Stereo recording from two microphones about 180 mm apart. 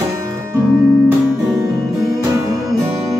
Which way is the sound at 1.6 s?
20° right (ahead or behind).